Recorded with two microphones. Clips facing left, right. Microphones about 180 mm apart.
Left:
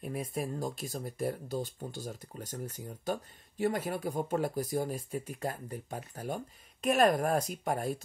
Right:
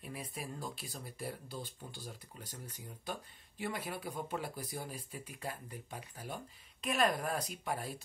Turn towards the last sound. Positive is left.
turn(degrees=45)  # may be behind; listen again after turning